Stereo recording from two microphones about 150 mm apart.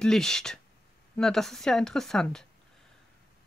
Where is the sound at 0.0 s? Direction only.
5° left (ahead or behind).